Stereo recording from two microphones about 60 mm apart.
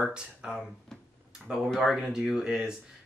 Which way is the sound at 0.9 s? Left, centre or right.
Centre.